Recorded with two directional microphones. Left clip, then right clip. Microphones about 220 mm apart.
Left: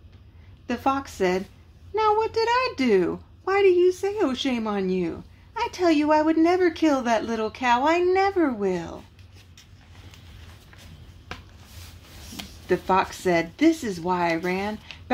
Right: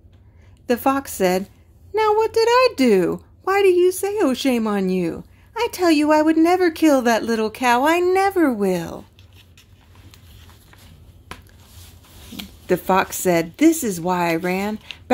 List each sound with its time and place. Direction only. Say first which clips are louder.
0.7 s a woman's voice: right 5 dB; 50° right (ahead or behind)
12.6 s a woman's voice: right 4 dB; 45° right (ahead or behind)